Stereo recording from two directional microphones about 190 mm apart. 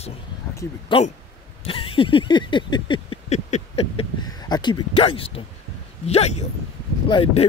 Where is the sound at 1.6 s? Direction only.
30° left (ahead or behind).